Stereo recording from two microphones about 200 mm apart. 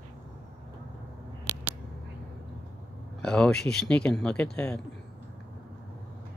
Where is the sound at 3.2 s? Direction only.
5° left (ahead or behind).